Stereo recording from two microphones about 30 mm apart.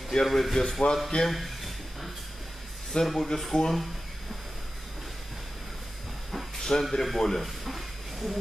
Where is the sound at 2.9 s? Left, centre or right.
Left.